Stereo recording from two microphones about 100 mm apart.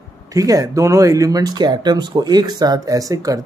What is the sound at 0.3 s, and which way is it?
Speech, 35° right (ahead or behind).